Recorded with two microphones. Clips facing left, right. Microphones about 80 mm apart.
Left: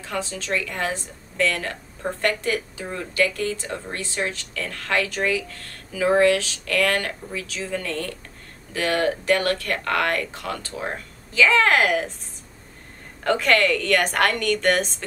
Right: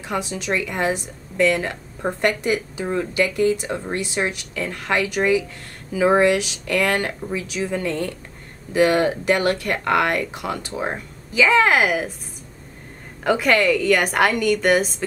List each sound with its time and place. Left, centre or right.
0.0 s a woman's voice: centre
13.2 s a woman's voice: centre